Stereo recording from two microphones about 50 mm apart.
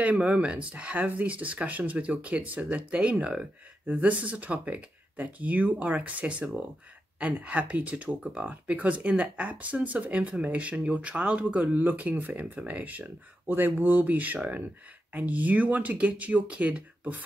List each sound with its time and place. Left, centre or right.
0.0 s speech: right